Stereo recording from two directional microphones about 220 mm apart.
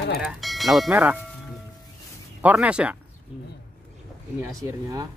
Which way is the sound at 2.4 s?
5° right (ahead or behind).